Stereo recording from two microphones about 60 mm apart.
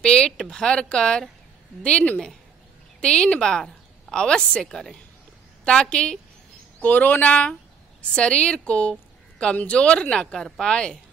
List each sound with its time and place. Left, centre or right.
0.0 s a sound: centre
1.8 s a woman's voice: centre
6.8 s a woman's voice: left